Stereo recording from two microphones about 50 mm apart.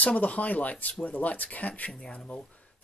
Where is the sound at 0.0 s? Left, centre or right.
Left.